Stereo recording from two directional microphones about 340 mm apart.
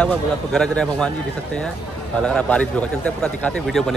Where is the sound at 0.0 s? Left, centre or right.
Centre.